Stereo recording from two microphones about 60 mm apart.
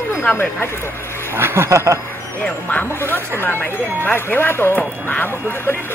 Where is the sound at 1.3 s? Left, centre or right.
Right.